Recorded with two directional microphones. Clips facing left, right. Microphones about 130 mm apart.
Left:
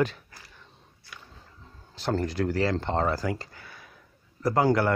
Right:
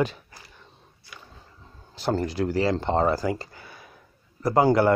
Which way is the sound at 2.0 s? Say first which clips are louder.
Right 2 dB; 10° right (ahead or behind).